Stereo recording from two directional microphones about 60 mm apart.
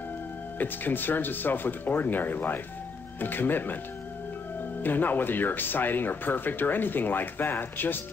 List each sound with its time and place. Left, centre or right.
0.6 s speech: left
4.8 s speech: left